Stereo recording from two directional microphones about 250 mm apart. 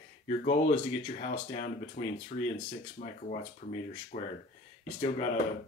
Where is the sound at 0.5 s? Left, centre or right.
Left.